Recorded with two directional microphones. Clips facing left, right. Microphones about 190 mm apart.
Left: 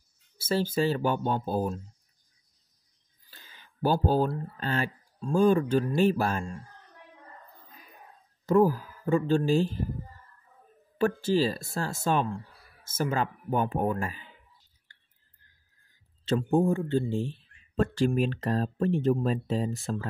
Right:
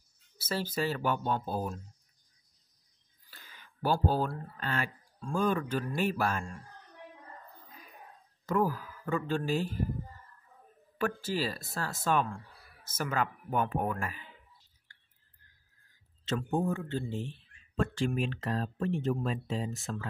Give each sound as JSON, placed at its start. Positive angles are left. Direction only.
{"t": 0.4, "sound": "speech", "side_deg": 25}
{"t": 3.3, "sound": "speech", "side_deg": 25}
{"t": 8.5, "sound": "speech", "side_deg": 30}
{"t": 11.0, "sound": "speech", "side_deg": 25}
{"t": 16.3, "sound": "speech", "side_deg": 30}
{"t": 17.9, "sound": "speech", "side_deg": 40}